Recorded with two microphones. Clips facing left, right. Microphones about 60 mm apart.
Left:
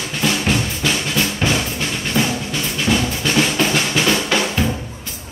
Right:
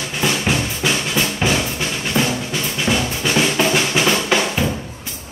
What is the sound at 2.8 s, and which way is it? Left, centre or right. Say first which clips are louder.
Drum: left 1 dB; centre.